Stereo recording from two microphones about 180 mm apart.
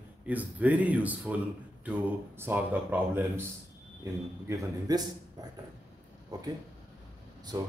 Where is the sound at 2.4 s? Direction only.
10° right (ahead or behind).